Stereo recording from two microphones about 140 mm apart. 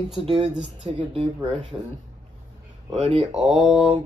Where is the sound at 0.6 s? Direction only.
5° right (ahead or behind).